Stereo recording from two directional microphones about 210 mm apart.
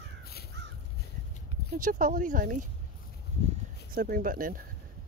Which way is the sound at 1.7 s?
40° right (ahead or behind).